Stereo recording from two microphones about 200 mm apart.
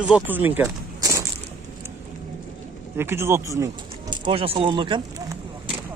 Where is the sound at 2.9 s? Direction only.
10° right (ahead or behind).